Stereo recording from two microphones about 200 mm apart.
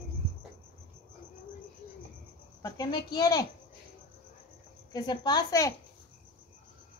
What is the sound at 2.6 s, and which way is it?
Speech, 20° left (ahead or behind).